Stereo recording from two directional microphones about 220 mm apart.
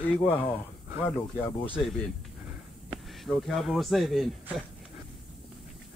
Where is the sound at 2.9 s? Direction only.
Centre (ahead or behind).